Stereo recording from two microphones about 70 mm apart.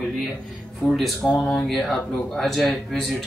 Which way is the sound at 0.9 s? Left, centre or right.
Centre.